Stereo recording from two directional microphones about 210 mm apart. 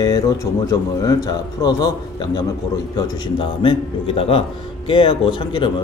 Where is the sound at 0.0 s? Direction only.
15° left (ahead or behind).